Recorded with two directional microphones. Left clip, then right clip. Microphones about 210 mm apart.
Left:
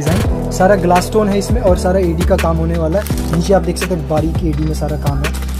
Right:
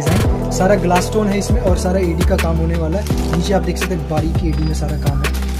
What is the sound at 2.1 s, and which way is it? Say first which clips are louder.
Speech: left 3 dB; centre (ahead or behind).